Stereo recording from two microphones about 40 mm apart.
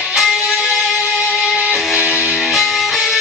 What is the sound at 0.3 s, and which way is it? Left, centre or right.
Music, right.